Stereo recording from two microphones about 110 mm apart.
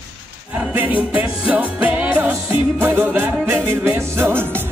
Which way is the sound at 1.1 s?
15° right (ahead or behind).